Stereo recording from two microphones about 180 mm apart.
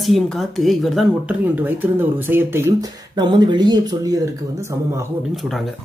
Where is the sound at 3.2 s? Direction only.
25° right (ahead or behind).